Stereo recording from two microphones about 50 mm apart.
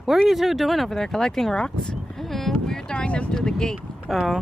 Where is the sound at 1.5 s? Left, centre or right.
Centre.